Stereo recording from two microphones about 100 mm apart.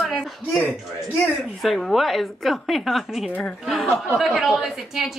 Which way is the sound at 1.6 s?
Centre (ahead or behind).